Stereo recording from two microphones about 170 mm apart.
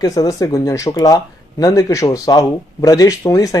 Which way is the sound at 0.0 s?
20° left (ahead or behind).